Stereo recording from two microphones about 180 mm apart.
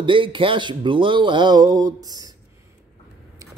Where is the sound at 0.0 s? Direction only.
30° right (ahead or behind).